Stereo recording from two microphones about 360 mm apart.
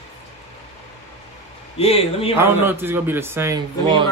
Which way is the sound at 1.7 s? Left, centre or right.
Centre.